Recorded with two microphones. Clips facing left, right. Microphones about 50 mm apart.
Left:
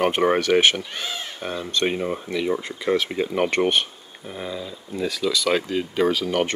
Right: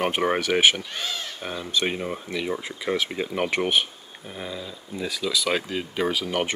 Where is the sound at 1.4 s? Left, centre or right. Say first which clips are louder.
Left 3 dB; centre.